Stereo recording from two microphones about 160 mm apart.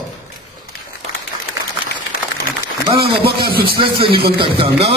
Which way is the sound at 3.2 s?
75° right (ahead or behind).